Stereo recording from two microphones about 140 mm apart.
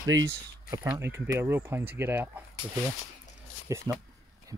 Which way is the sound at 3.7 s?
25° right (ahead or behind).